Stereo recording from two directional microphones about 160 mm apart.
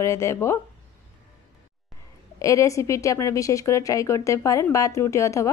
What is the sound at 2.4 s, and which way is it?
A woman's voice, 20° left (ahead or behind).